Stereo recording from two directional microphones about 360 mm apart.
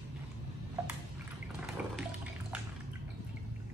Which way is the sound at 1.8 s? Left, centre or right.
Centre.